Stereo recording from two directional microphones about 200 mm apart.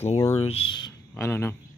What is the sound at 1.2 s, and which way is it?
Speech, 10° left (ahead or behind).